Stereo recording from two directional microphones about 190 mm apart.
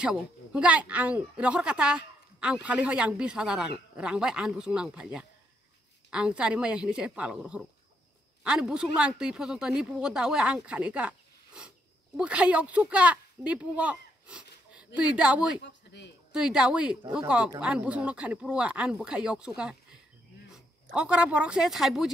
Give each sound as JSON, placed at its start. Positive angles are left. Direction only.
{"t": 0.0, "sound": "a woman's voice", "side_deg": -5}
{"t": 15.6, "sound": "speech", "side_deg": 65}
{"t": 16.3, "sound": "a woman's voice", "side_deg": -5}